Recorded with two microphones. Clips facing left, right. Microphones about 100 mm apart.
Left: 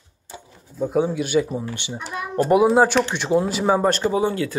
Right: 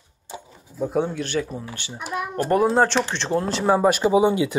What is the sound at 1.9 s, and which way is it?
Speech, 5° right (ahead or behind).